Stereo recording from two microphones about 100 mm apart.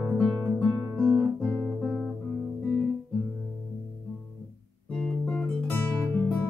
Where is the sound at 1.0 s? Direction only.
30° right (ahead or behind).